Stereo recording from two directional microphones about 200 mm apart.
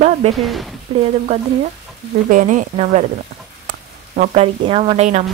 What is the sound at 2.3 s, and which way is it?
Speech, 40° right (ahead or behind).